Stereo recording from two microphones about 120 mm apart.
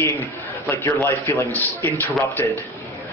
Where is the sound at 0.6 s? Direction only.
15° left (ahead or behind).